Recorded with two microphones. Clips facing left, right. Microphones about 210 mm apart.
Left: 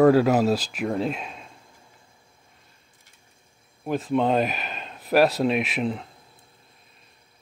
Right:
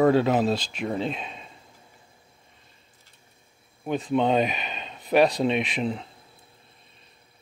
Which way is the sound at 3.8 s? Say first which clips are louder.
Left 1 dB; centre (ahead or behind).